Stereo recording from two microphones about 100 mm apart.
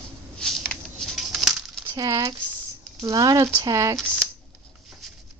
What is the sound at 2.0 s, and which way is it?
Speech, 30° right (ahead or behind).